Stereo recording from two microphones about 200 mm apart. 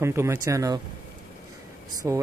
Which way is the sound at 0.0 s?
15° right (ahead or behind).